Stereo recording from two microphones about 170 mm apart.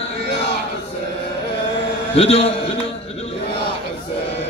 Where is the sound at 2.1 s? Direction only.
35° left (ahead or behind).